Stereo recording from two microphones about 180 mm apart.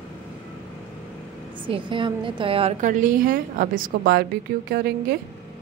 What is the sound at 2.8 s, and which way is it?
A woman's voice, 45° right (ahead or behind).